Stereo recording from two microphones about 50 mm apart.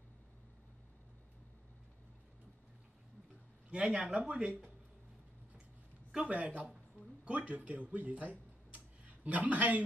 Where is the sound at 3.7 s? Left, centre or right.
Centre.